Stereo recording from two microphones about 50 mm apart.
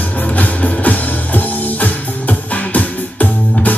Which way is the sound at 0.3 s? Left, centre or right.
Left.